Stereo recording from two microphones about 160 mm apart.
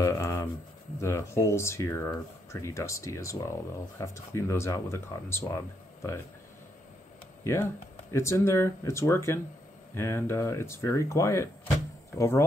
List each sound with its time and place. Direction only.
0.0 s a sound: 20° left (ahead or behind)
0.9 s speech: 20° left (ahead or behind)
8.1 s speech: 15° left (ahead or behind)